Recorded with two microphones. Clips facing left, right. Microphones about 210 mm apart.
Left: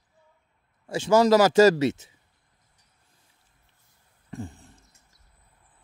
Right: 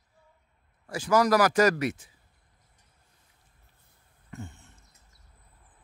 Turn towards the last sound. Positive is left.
turn(degrees=35)  # may be behind; listen again after turning